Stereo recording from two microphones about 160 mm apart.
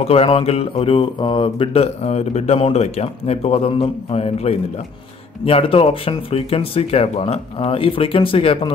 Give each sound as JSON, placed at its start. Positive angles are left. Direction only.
{"t": 0.0, "sound": "speech", "side_deg": 35}